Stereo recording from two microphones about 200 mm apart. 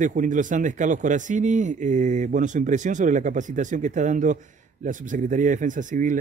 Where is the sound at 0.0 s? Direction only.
40° right (ahead or behind).